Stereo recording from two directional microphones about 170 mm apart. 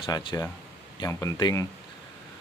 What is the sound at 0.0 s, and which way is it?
Speech, 25° left (ahead or behind).